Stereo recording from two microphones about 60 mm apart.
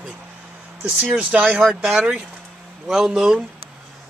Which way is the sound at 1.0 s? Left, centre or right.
Right.